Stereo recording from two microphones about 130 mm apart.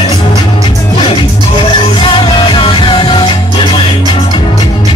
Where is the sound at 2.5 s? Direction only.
40° left (ahead or behind).